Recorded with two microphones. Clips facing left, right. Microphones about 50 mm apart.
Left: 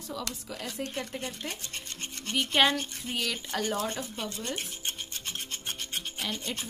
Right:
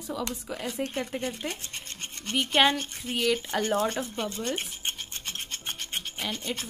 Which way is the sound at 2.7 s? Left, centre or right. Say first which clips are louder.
Right 2 dB; centre.